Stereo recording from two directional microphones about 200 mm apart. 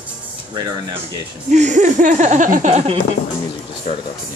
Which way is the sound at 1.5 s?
35° right (ahead or behind).